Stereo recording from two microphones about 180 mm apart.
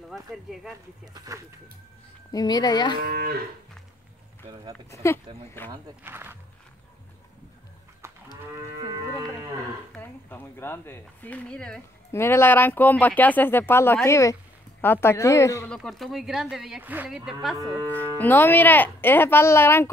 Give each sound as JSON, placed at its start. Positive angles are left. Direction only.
{"t": 0.1, "sound": "a woman's voice", "side_deg": 0}
{"t": 1.1, "sound": "speech", "side_deg": -20}
{"t": 2.3, "sound": "speech", "side_deg": 20}
{"t": 3.0, "sound": "moo", "side_deg": -55}
{"t": 5.0, "sound": "speech", "side_deg": 15}
{"t": 5.7, "sound": "speech", "side_deg": -10}
{"t": 9.9, "sound": "speech", "side_deg": 10}
{"t": 15.7, "sound": "a woman's voice", "side_deg": 0}
{"t": 17.7, "sound": "speech", "side_deg": 10}